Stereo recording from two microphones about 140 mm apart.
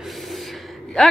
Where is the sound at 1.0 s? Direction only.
5° left (ahead or behind).